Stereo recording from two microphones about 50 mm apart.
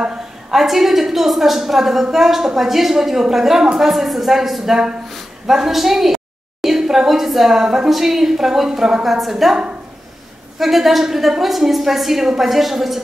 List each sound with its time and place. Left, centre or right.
0.5 s a woman's voice: centre